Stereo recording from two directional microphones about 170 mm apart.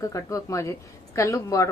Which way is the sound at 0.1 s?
20° left (ahead or behind).